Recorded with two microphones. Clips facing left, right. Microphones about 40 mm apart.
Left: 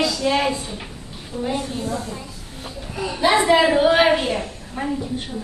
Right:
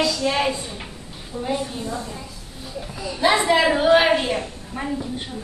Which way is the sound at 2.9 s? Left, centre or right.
Left.